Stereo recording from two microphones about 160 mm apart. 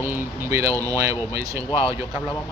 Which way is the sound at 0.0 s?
15° right (ahead or behind).